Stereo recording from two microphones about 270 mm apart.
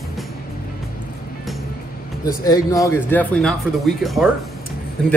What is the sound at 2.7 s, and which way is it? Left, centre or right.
Speech, centre.